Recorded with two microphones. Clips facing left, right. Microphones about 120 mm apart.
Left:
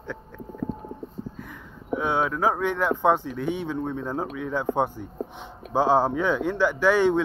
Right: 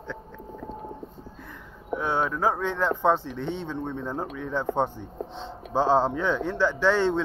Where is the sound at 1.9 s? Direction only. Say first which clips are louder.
Left 2 dB; 15° left (ahead or behind).